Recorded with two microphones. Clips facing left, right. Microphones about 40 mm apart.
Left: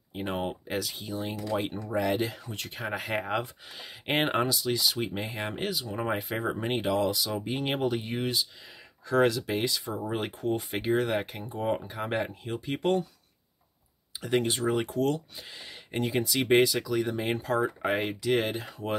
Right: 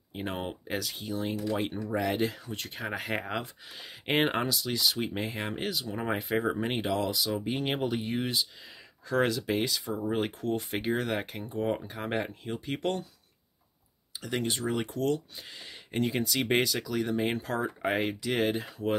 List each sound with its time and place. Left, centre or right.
0.1 s speech: centre
14.2 s speech: left
15.3 s speech: centre